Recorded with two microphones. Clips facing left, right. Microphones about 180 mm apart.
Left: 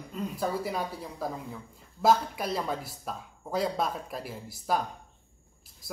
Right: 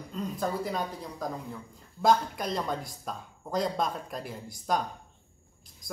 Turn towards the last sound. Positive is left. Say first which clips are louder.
# even
turn(degrees=5)  # may be behind; listen again after turning